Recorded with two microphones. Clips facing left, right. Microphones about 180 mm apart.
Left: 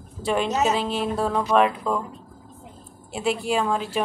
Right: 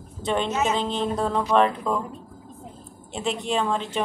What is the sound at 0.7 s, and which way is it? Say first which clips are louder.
A woman's voice: even; 5° left (ahead or behind).